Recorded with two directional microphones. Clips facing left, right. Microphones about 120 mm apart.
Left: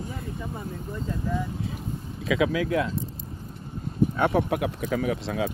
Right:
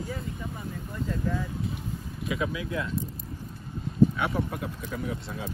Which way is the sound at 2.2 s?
90° left.